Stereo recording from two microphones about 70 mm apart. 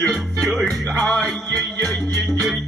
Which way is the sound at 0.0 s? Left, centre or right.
Centre.